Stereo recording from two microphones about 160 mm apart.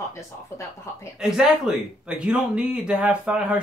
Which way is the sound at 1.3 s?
5° right (ahead or behind).